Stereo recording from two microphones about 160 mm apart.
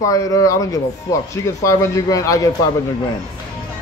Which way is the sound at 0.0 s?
20° left (ahead or behind).